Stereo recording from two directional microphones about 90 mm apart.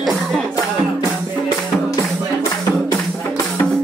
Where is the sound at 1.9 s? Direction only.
45° left (ahead or behind).